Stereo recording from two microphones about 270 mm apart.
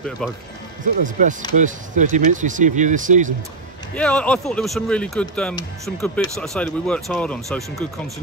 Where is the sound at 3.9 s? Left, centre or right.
Centre.